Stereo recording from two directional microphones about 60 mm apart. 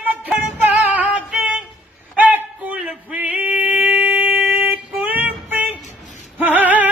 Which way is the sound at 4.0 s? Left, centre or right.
Right.